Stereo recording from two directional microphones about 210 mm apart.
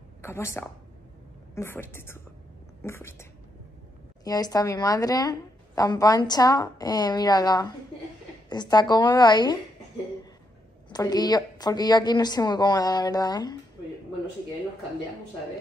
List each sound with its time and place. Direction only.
0.2 s a woman's voice: 10° left (ahead or behind)
10.9 s a woman's voice: 20° left (ahead or behind)